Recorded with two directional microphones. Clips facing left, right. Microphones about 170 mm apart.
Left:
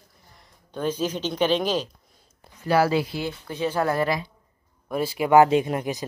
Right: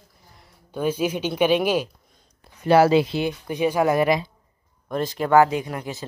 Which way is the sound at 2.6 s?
20° right (ahead or behind).